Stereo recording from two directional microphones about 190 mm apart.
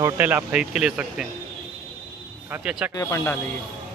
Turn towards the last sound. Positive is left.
turn(degrees=15)  # may be behind; listen again after turning